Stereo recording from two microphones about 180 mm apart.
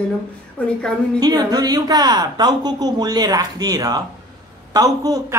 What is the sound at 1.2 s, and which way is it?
A man's voice, 20° right (ahead or behind).